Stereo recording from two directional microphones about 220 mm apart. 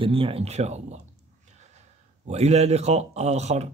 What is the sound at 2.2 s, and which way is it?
Speech, 30° right (ahead or behind).